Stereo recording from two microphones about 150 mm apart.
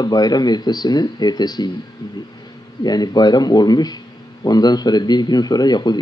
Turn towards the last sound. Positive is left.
turn(degrees=30)  # may be behind; listen again after turning